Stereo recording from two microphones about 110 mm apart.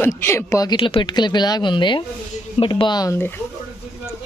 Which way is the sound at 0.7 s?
50° left (ahead or behind).